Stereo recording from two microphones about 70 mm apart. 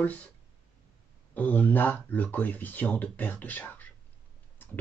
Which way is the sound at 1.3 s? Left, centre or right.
Left.